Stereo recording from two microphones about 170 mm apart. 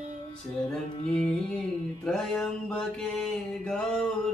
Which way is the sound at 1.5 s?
5° left (ahead or behind).